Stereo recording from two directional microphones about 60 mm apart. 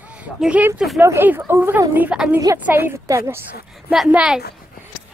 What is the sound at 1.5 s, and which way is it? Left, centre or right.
Speech, right.